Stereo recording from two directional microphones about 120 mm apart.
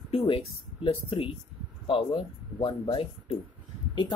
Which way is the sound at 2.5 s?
50° left (ahead or behind).